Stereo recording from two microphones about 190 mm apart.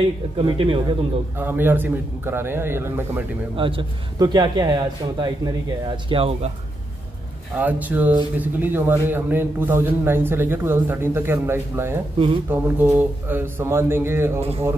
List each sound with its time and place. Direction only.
0.4 s a man's voice: 30° right (ahead or behind)
1.4 s a man's voice: 10° right (ahead or behind)
3.5 s a man's voice: 25° right (ahead or behind)
7.5 s a man's voice: 10° right (ahead or behind)